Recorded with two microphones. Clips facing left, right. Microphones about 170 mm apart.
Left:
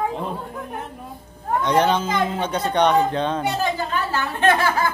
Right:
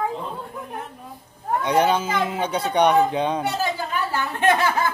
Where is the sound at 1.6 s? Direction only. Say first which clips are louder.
Left 1 dB; 10° right (ahead or behind).